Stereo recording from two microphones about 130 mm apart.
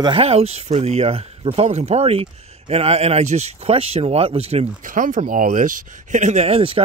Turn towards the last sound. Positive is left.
turn(degrees=-45)  # may be behind; listen again after turning